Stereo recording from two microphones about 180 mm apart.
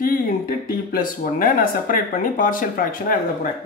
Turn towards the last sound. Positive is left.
turn(degrees=50)  # may be behind; listen again after turning